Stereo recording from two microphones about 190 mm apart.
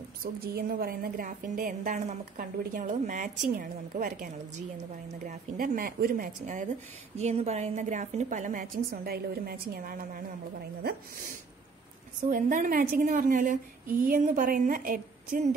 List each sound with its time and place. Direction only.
0.2 s a woman's voice: 55° right (ahead or behind)
12.3 s a woman's voice: 45° right (ahead or behind)